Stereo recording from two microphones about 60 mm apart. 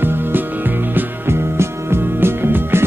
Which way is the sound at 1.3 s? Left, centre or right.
Right.